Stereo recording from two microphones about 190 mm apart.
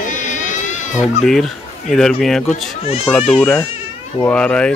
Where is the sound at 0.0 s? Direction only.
40° left (ahead or behind).